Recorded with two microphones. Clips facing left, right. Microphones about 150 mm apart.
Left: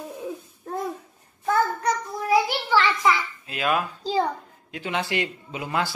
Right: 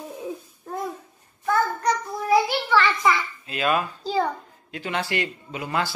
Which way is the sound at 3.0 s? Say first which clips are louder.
Even; 5° left (ahead or behind).